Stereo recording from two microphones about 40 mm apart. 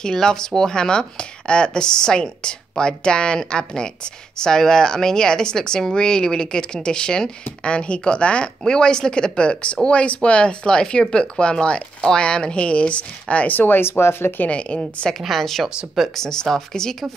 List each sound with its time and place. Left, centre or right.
0.0 s speech: centre; by 13.5 s left
13.5 s speech: left
13.7 s speech: left
14.5 s speech: left
15.1 s a woman's voice: centre